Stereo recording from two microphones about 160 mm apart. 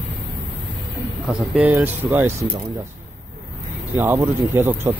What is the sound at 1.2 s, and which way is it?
Speech, 5° right (ahead or behind).